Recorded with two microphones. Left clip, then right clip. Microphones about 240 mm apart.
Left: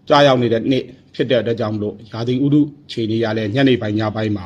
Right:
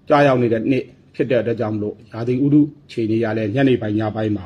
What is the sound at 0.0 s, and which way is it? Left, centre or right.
A man's voice, left.